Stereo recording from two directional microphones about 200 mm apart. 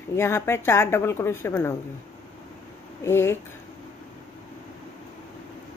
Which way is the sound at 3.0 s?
15° left (ahead or behind).